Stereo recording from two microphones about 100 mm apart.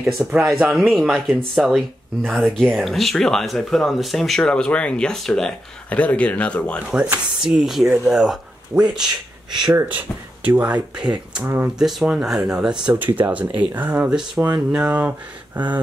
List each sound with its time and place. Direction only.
0.0 s speech: 10° right (ahead or behind); by 6.8 s 10° left (ahead or behind)
6.9 s speech: 10° right (ahead or behind)
9.5 s speech: 45° right (ahead or behind)
9.8 s speech: 15° right (ahead or behind)
11.8 s speech: centre (ahead or behind)